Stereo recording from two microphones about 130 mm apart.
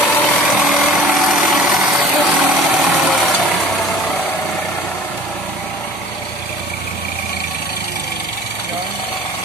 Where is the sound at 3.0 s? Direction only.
Centre (ahead or behind).